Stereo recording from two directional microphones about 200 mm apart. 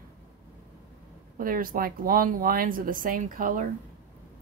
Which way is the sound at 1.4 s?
45° right (ahead or behind).